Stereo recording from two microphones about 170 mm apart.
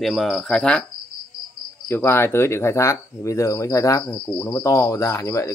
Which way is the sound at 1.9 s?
15° left (ahead or behind).